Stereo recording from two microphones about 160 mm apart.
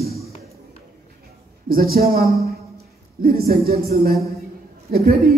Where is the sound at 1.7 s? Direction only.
70° right (ahead or behind).